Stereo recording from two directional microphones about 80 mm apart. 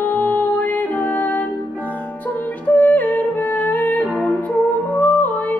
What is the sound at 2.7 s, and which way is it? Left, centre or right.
Yodeling, left.